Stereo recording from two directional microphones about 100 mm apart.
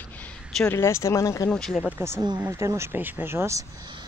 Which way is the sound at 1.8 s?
25° right (ahead or behind).